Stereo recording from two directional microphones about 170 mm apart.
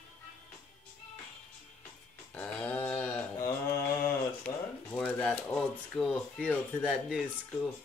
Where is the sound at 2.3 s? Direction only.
10° left (ahead or behind).